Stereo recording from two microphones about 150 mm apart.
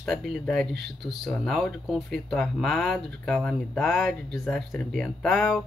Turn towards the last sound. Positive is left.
turn(degrees=0)  # may be behind; listen again after turning